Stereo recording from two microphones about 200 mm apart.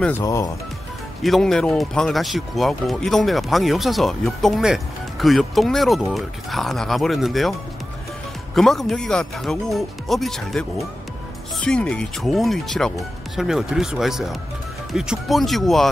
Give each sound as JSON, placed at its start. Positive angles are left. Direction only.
{"t": 0.0, "sound": "speech", "side_deg": 15}
{"t": 1.2, "sound": "speech", "side_deg": 0}
{"t": 8.5, "sound": "speech", "side_deg": 0}